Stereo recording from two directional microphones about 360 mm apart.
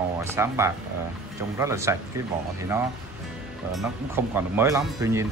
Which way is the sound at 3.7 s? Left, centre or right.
Centre.